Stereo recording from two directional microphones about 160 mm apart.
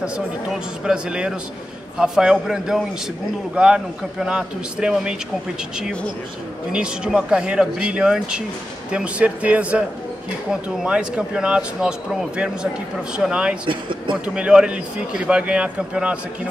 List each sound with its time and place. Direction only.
0.0 s a man's voice: 5° right (ahead or behind)
6.7 s a man's voice: 5° right (ahead or behind)
13.7 s speech: 30° right (ahead or behind)
14.2 s speech: 5° right (ahead or behind)